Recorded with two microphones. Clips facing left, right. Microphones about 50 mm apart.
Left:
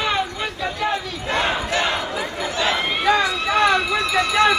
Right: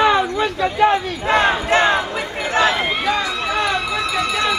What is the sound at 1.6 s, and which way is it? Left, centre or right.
Crowd, right.